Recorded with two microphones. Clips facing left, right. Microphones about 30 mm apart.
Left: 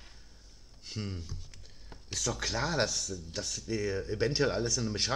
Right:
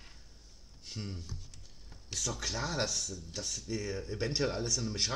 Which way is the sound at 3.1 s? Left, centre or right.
Left.